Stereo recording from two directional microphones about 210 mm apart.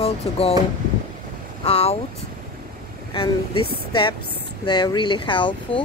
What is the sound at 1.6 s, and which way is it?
Speech, 25° left (ahead or behind).